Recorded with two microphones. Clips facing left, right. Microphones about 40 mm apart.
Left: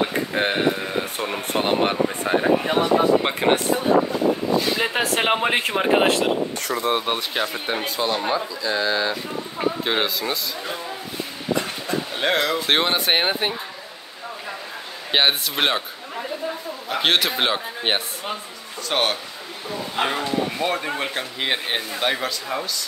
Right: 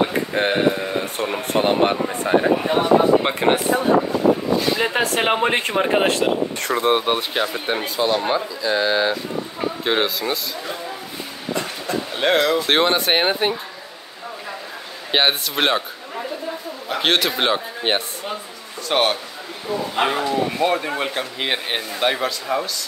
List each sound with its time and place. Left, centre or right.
0.0 s a sound: centre
2.7 s a man's voice: centre
6.6 s speech: right
6.9 s a man's voice: centre
8.6 s speech: centre
9.8 s a man's voice: centre
11.9 s speech: centre
15.0 s a man's voice: centre